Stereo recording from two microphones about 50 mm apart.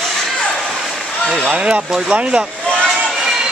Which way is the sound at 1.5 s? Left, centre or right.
Right.